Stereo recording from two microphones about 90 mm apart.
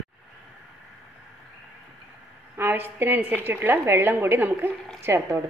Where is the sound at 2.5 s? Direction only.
25° right (ahead or behind).